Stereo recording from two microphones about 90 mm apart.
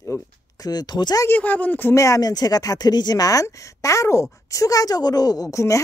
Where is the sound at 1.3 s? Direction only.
20° left (ahead or behind).